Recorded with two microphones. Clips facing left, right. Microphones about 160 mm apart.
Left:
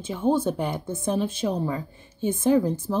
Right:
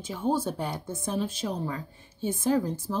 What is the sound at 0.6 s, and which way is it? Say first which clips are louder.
Speech: left 5 dB; 20° left (ahead or behind).